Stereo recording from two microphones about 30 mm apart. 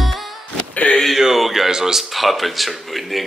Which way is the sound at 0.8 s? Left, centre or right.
Left.